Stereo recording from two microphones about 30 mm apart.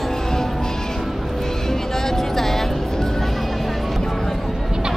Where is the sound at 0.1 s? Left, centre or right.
Centre.